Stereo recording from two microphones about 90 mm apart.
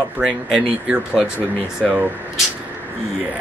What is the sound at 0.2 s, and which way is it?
Speech, 10° right (ahead or behind).